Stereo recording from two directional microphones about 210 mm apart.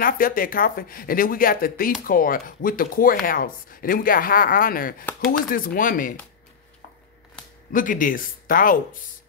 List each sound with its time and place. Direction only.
0.0 s speech: 40° left (ahead or behind)
7.7 s speech: 40° left (ahead or behind)